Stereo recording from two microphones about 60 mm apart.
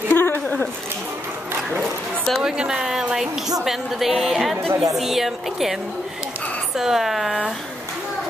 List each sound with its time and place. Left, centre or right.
0.1 s a sound: left
1.8 s a woman's voice: centre
6.8 s a woman's voice: centre